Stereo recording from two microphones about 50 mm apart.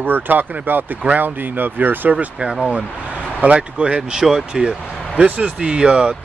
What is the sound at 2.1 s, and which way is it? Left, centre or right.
Speech, centre.